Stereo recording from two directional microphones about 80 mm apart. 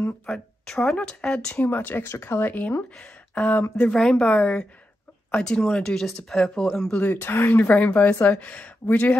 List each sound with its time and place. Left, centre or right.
0.3 s a woman's voice: centre
1.6 s a woman's voice: left; by 6.9 s centre
6.9 s speech: left